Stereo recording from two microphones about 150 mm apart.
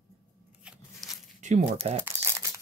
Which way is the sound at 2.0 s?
20° right (ahead or behind).